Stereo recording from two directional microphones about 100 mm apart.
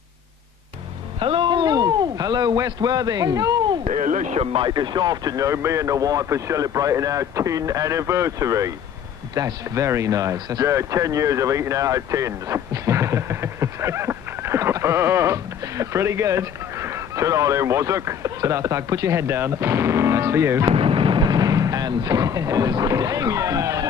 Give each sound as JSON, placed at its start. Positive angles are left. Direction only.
{"t": 1.2, "sound": "a sound", "side_deg": -60}
{"t": 4.4, "sound": "speech", "side_deg": -65}
{"t": 4.6, "sound": "speech", "side_deg": -45}
{"t": 20.6, "sound": "speech", "side_deg": -70}